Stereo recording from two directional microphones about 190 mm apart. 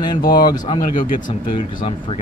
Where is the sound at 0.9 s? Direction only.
45° left (ahead or behind).